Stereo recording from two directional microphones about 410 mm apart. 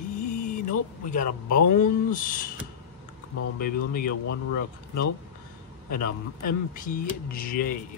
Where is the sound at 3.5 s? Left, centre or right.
Left.